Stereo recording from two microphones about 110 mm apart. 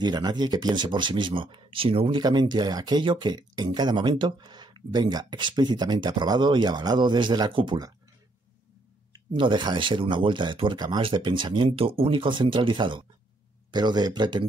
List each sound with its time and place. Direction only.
0.0 s speech: 40° right (ahead or behind)
9.1 s speech: 45° right (ahead or behind)